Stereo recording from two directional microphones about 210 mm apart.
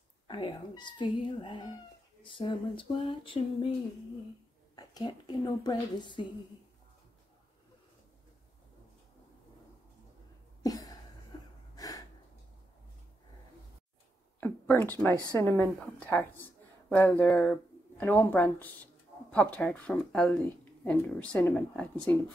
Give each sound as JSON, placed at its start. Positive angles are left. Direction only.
{"t": 0.3, "sound": "a woman's voice", "side_deg": 20}
{"t": 4.7, "sound": "a woman's voice", "side_deg": 20}
{"t": 10.6, "sound": "a sound", "side_deg": 15}
{"t": 11.7, "sound": "gasp", "side_deg": 15}
{"t": 14.4, "sound": "a woman's voice", "side_deg": 10}